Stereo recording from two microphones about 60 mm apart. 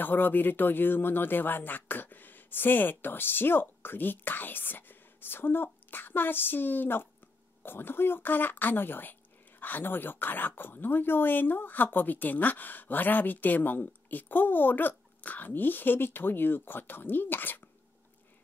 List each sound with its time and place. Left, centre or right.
0.0 s speech: left